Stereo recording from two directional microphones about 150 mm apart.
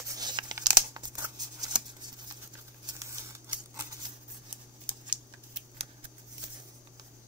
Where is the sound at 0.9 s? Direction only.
20° right (ahead or behind).